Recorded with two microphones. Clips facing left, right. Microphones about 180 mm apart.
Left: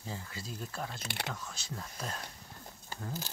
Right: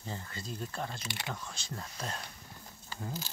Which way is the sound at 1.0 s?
60° left (ahead or behind).